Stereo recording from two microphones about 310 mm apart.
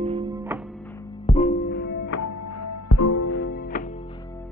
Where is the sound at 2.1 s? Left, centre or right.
Left.